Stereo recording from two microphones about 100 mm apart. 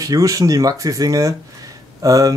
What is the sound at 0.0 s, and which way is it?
Speech, 35° right (ahead or behind).